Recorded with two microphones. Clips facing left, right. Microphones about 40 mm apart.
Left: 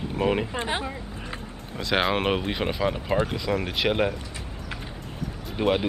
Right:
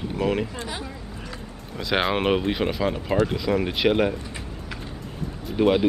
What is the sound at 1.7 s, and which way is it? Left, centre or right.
Speech, centre.